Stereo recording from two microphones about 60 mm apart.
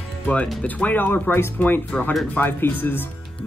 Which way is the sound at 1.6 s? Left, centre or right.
Left.